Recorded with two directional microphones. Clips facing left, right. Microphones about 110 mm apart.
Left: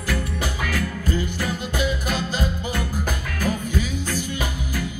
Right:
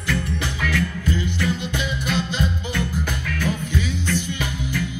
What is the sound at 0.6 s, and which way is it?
Music, 40° left (ahead or behind).